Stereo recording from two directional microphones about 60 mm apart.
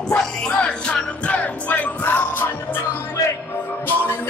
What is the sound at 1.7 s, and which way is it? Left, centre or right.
Music, left.